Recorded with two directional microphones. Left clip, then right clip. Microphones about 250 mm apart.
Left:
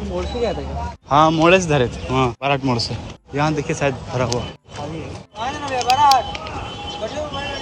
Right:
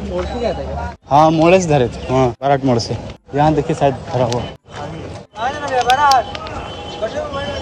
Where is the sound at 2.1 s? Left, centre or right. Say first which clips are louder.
Right 6 dB; left.